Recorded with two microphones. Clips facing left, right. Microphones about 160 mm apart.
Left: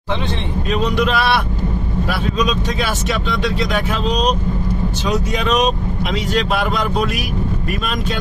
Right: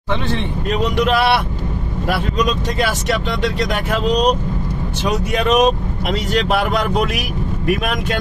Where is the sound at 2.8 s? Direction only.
65° right (ahead or behind).